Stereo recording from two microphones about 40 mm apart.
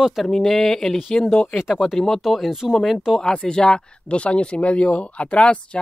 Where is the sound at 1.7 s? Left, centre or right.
Centre.